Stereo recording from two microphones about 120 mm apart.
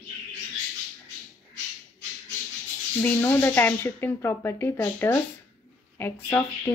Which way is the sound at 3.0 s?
20° left (ahead or behind).